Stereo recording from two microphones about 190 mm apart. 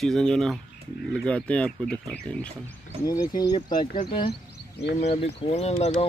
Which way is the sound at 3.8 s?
55° left (ahead or behind).